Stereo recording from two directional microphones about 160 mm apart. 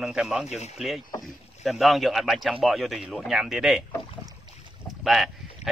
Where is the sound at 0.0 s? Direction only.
5° right (ahead or behind).